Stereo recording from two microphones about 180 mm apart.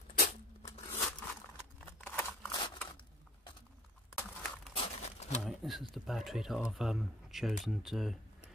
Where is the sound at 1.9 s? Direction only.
10° left (ahead or behind).